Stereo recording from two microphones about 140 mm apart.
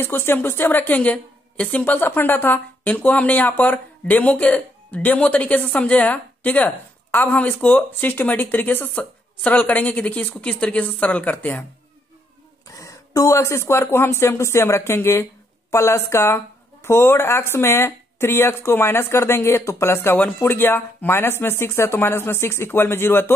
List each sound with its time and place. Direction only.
0.0 s a woman's voice: 15° left (ahead or behind)
12.6 s a woman's voice: 20° left (ahead or behind)